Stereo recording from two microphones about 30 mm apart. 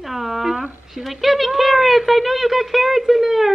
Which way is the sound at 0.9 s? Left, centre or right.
Centre.